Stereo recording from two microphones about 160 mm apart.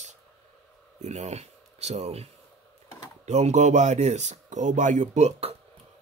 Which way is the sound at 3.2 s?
45° right (ahead or behind).